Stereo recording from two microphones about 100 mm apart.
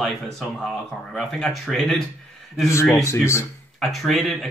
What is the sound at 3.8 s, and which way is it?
Speech, centre (ahead or behind).